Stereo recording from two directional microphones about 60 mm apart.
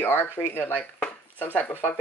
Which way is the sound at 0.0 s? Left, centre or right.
Left.